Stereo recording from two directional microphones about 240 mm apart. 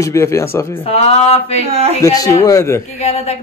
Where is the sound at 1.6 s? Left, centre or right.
Right.